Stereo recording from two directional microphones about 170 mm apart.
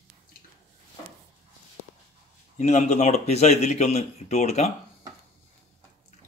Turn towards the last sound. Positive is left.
turn(degrees=40)  # may be behind; listen again after turning